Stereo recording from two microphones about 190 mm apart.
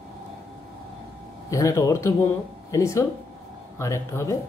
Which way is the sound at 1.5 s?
15° left (ahead or behind).